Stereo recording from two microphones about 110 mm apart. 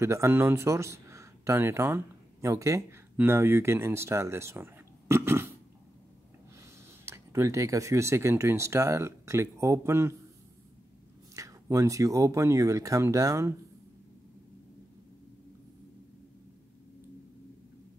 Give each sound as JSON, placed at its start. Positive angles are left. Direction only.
{"t": 0.0, "sound": "speech", "side_deg": -25}
{"t": 7.1, "sound": "speech", "side_deg": -25}
{"t": 11.3, "sound": "speech", "side_deg": -30}